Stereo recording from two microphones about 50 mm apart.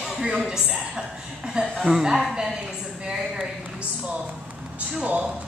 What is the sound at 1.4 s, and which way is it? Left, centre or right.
A woman's voice, centre.